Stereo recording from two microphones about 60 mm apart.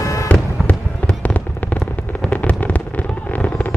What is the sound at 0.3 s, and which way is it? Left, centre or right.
Fireworks, left.